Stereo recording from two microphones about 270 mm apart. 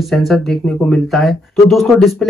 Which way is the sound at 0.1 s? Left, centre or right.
Centre.